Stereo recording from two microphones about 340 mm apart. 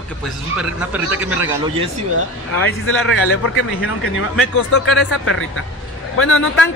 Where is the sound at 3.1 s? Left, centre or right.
Left.